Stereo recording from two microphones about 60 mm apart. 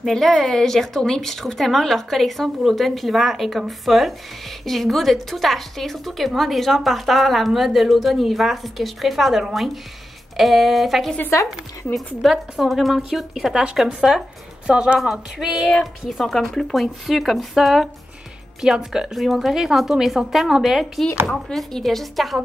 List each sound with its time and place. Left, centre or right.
0.0 s a woman's voice: centre
12.2 s a woman's voice: centre